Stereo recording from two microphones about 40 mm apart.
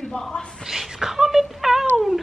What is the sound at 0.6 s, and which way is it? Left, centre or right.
Speech, centre.